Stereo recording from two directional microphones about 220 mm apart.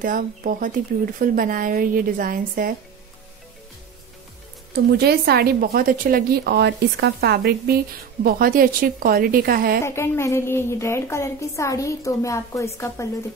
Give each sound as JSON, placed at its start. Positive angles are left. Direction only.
{"t": 0.0, "sound": "speech", "side_deg": -40}
{"t": 4.9, "sound": "a woman's voice", "side_deg": -45}
{"t": 9.8, "sound": "a woman's voice", "side_deg": 10}